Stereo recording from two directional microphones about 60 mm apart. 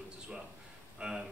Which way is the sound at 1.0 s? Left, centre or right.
Centre.